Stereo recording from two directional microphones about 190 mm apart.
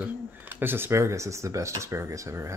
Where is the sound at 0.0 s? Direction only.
10° right (ahead or behind).